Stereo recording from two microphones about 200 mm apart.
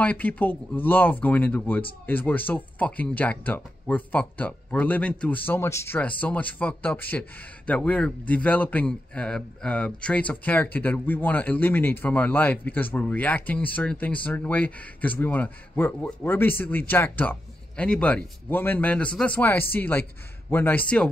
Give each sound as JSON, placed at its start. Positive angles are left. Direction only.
{"t": 0.0, "sound": "speech", "side_deg": 10}